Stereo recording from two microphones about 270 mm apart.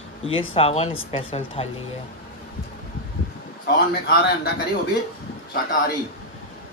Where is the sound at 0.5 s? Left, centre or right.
Left.